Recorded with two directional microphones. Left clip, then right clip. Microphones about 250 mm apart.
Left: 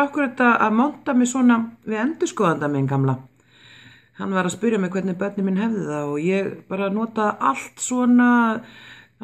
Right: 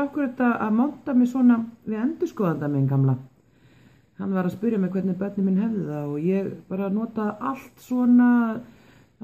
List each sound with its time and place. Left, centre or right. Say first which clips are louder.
0.0 s a man's voice: left 6 dB; centre
4.2 s a man's voice: left 5 dB; centre